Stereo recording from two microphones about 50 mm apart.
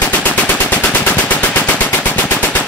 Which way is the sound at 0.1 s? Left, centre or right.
Left.